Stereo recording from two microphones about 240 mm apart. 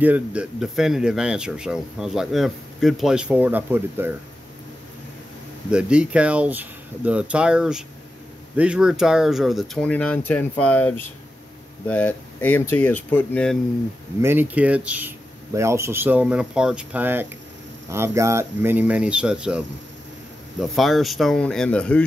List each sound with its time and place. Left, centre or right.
0.0 s speech: centre
5.7 s speech: centre
14.2 s speech: centre
20.7 s speech: centre